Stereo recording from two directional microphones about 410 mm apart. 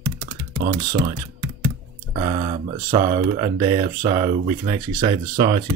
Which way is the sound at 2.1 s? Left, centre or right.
Centre.